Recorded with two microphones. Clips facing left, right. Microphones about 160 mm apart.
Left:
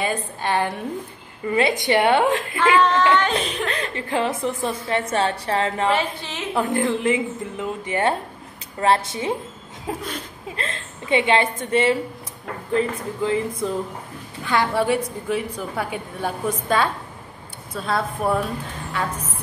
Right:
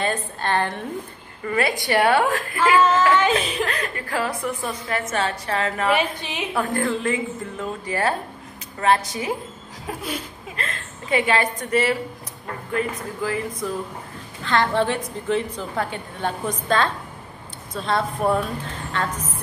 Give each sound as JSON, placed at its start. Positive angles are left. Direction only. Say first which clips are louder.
{"t": 0.0, "sound": "a woman's voice", "louder": "even", "side_deg": 10}
{"t": 2.8, "sound": "speech", "louder": "even", "side_deg": -5}
{"t": 3.7, "sound": "a woman's voice", "louder": "left 2 dB", "side_deg": 25}
{"t": 5.9, "sound": "a woman's voice", "louder": "even", "side_deg": -15}
{"t": 6.5, "sound": "a woman's voice", "louder": "left 2 dB", "side_deg": 20}
{"t": 14.4, "sound": "a woman's voice", "louder": "even", "side_deg": 10}